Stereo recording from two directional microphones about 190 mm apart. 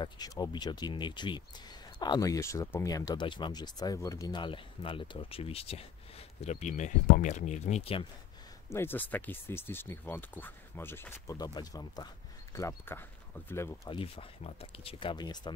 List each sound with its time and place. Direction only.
0.0 s speech: 20° left (ahead or behind)
8.7 s speech: 10° left (ahead or behind)
13.8 s speech: 30° left (ahead or behind)